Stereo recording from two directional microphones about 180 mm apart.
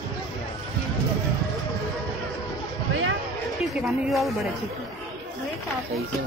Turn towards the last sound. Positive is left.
turn(degrees=0)  # may be behind; listen again after turning